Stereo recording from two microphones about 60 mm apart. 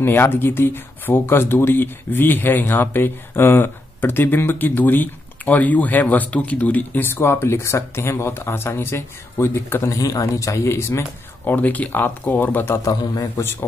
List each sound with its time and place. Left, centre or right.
0.0 s speech: left
7.1 s speech: left
9.9 s speech: left
10.7 s speech: left
11.4 s speech: left
12.7 s a man's voice: left
13.4 s speech: left